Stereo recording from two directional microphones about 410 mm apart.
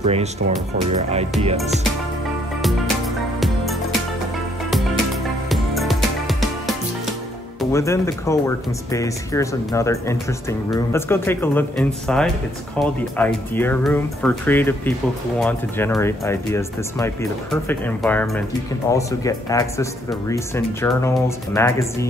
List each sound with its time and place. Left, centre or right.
0.0 s speech: centre
3.3 s music: centre
5.5 s music: centre
7.7 s speech: centre